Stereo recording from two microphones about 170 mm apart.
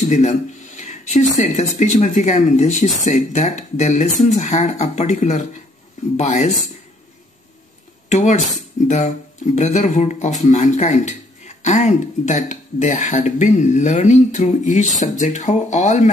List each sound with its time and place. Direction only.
0.1 s speech: 45° left (ahead or behind)
8.1 s speech: 45° left (ahead or behind)